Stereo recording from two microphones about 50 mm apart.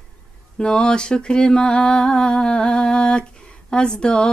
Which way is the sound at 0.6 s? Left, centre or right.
Centre.